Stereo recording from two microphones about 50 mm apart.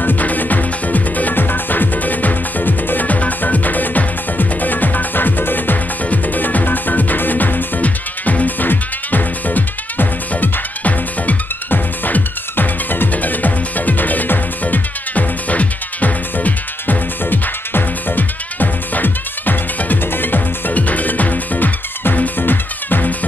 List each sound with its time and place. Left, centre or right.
0.0 s music: left